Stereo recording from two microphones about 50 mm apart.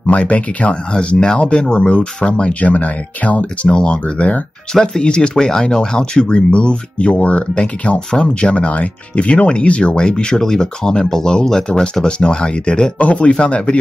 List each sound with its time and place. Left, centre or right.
0.0 s speech: left